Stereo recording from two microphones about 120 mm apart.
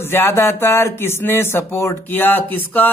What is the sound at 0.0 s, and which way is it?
A man's voice, 20° left (ahead or behind).